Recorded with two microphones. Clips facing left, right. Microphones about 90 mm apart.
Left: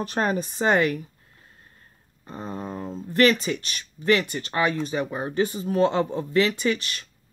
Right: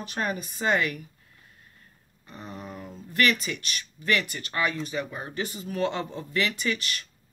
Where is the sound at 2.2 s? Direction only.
30° left (ahead or behind).